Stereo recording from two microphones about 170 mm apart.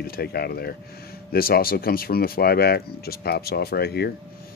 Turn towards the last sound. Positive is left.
turn(degrees=70)  # may be behind; listen again after turning